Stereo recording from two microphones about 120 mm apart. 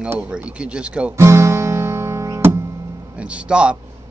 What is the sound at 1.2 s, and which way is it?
Guitar, 25° right (ahead or behind).